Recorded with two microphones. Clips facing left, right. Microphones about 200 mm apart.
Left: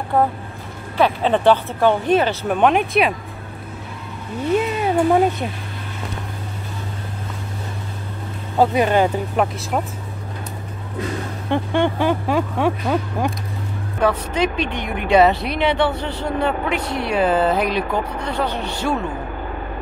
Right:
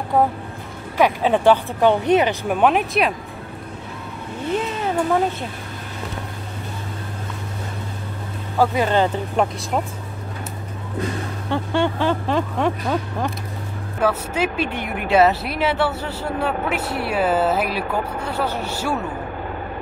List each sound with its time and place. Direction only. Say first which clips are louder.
0.9 s speech: even; 10° right (ahead or behind)
2.4 s a woman's voice: left 1 dB; 5° right (ahead or behind)
4.7 s speech: left 3 dB; 15° left (ahead or behind)
8.5 s speech: left 2 dB; 20° left (ahead or behind)
9.4 s a woman's voice: even; centre (ahead or behind)
11.5 s speech: left 2 dB; 15° left (ahead or behind)
14.0 s a woman's voice: left 2 dB; 5° right (ahead or behind)